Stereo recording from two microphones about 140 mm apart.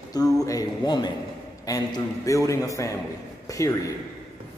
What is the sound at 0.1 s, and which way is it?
A man's voice, 25° left (ahead or behind).